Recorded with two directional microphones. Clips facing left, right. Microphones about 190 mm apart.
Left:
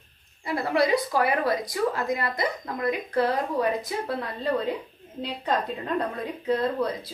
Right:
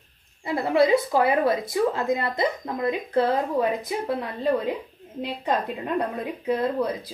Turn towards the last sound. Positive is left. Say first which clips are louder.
# right 1 dB
turn(degrees=-15)  # may be behind; listen again after turning